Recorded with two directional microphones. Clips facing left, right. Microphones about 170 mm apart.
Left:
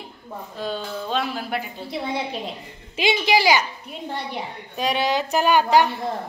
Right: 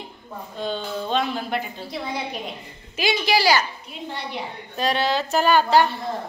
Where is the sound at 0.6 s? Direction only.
5° left (ahead or behind).